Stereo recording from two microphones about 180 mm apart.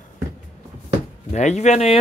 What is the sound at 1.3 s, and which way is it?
Speech, 40° left (ahead or behind).